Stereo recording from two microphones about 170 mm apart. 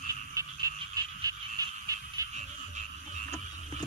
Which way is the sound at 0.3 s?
20° right (ahead or behind).